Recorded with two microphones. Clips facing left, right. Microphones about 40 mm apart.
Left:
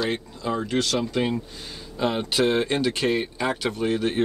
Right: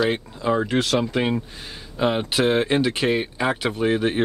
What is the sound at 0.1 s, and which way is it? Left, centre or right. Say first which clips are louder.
Speech: right 5 dB; right.